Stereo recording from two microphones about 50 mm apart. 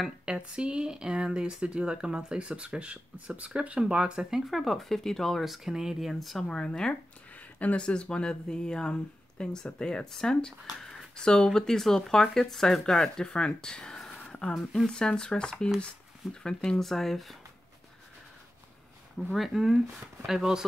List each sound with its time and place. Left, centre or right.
0.2 s speech: centre
4.5 s speech: centre
5.4 s speech: centre
6.5 s speech: centre
14.2 s a sound: left
14.5 s speech: centre
14.9 s speech: centre
19.3 s speech: centre